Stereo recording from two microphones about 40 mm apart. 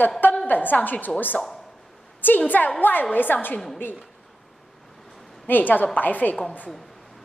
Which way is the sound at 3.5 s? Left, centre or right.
Centre.